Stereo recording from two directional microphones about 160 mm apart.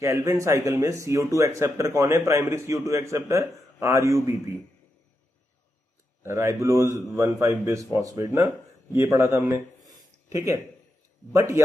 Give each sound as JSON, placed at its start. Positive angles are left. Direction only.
{"t": 0.0, "sound": "speech", "side_deg": -20}
{"t": 6.2, "sound": "speech", "side_deg": -20}